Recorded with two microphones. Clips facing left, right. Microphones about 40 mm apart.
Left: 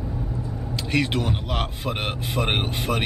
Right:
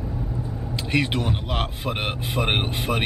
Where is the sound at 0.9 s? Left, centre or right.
Centre.